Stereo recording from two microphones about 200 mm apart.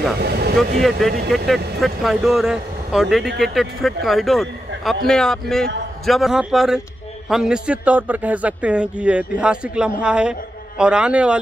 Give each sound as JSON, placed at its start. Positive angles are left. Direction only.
{"t": 0.2, "sound": "speech", "side_deg": -55}
{"t": 0.7, "sound": "a man's voice", "side_deg": 0}